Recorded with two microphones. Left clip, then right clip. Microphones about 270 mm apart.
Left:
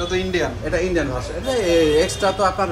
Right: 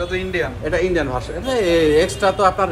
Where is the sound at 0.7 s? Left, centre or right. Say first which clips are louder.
Right 5 dB; right.